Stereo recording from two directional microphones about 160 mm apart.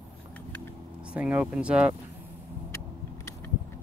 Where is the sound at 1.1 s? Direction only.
5° right (ahead or behind).